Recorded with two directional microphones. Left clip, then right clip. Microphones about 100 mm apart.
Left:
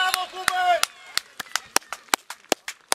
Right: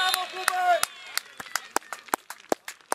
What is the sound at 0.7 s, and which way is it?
Chop, centre (ahead or behind).